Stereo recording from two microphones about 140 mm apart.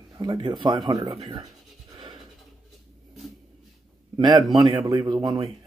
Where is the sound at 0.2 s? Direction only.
30° right (ahead or behind).